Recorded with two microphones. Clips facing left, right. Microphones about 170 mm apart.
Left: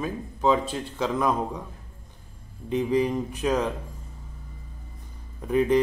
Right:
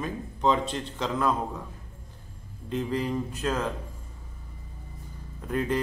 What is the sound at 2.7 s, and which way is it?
Speech, 15° left (ahead or behind).